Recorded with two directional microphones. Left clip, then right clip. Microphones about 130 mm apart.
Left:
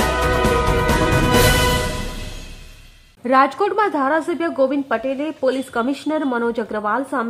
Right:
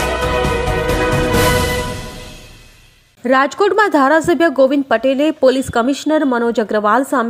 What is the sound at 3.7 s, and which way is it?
A woman's voice, 35° right (ahead or behind).